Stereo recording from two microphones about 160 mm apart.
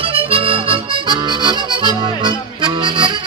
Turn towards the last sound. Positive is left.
turn(degrees=-30)  # may be behind; listen again after turning